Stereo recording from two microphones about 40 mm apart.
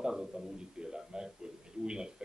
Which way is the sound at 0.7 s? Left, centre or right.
Centre.